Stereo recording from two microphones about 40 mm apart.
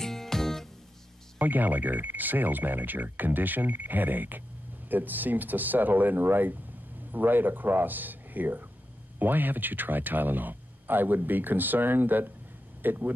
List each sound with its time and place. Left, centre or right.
0.0 s music: centre
1.4 s speech: right